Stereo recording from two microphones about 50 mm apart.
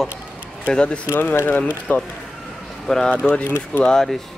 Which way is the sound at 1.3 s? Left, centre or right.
Left.